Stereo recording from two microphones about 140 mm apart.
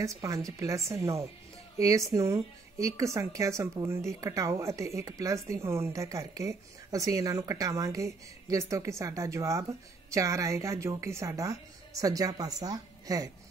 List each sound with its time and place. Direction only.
0.0 s speech: 20° right (ahead or behind)